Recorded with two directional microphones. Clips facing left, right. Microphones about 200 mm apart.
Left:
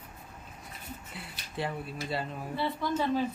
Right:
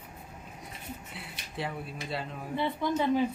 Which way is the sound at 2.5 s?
20° right (ahead or behind).